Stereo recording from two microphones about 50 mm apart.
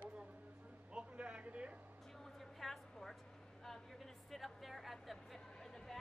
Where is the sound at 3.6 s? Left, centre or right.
Centre.